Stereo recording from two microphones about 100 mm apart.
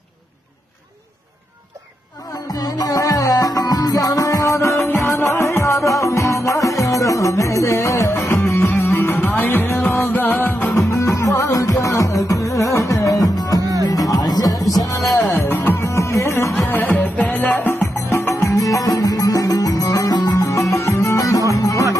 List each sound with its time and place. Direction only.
2.4 s music: 40° left (ahead or behind)
13.6 s music: 40° right (ahead or behind)
13.8 s music: 40° left (ahead or behind)
15.1 s music: 30° left (ahead or behind)
16.5 s music: 20° left (ahead or behind); by 20.4 s 40° left (ahead or behind)
20.4 s music: 30° left (ahead or behind)